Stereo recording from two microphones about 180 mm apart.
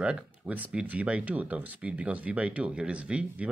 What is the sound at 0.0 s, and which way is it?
Speech, 5° right (ahead or behind).